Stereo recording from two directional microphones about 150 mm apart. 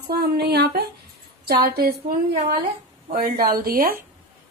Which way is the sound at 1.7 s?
90° right.